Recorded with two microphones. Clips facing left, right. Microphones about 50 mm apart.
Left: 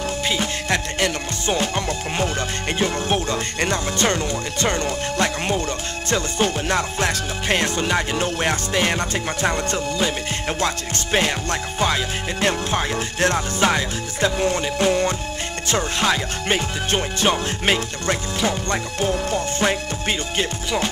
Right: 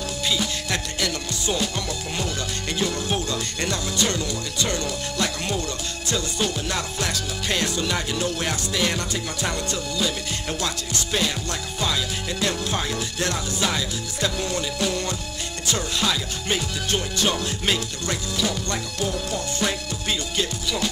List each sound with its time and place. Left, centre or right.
0.3 s music: left
2.8 s speech: left
6.0 s music: left